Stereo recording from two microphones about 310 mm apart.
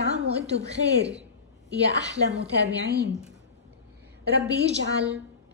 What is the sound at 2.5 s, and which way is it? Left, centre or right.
Speech, right.